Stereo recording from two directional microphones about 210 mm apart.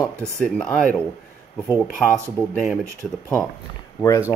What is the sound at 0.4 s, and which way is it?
Speech, 5° left (ahead or behind).